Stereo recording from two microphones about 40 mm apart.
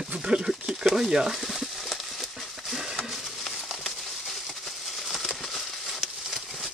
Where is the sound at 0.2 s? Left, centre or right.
Right.